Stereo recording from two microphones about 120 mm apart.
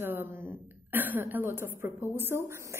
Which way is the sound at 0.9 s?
15° right (ahead or behind).